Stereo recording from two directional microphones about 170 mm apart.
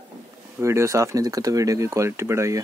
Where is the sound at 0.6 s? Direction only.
15° right (ahead or behind).